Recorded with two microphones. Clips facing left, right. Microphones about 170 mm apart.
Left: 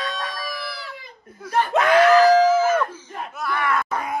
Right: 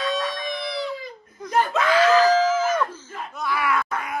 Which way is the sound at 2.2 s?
10° left (ahead or behind).